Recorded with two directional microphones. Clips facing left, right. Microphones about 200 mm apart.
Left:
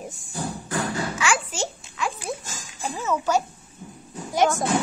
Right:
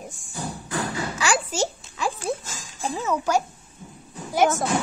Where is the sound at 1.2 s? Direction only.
35° right (ahead or behind).